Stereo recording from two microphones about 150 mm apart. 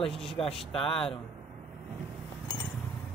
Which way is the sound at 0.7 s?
40° left (ahead or behind).